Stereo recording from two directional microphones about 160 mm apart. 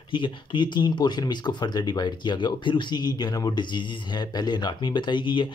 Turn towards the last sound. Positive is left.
turn(degrees=30)  # may be behind; listen again after turning